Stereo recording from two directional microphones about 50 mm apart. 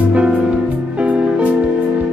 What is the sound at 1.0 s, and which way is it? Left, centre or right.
Music, right.